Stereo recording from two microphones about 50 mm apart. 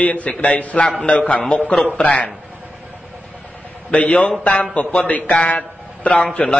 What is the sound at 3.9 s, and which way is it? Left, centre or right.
A man's voice, left.